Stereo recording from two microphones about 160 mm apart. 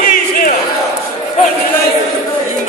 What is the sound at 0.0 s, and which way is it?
Crowd, 60° left (ahead or behind).